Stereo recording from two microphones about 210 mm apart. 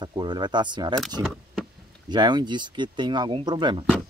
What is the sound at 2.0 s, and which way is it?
Speech, 20° right (ahead or behind).